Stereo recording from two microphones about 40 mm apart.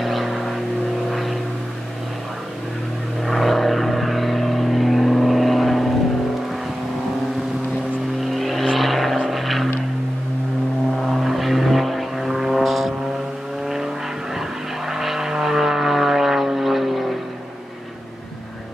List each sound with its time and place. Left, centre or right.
0.0 s vehicle: centre
3.3 s vehicle: centre
8.2 s vehicle: centre
11.1 s vehicle: centre